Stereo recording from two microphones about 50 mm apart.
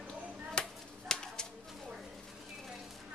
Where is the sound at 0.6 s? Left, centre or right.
Centre.